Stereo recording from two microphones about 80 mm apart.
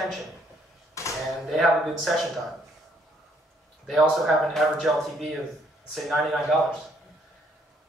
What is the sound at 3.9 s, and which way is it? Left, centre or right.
Speech, centre.